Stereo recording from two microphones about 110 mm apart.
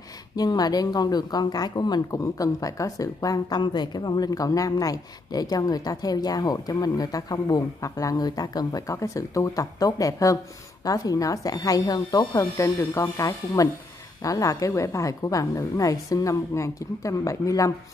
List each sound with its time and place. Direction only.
0.4 s speech: 35° left (ahead or behind)